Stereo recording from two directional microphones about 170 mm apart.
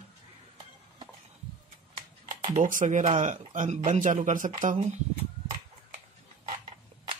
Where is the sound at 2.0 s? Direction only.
35° right (ahead or behind).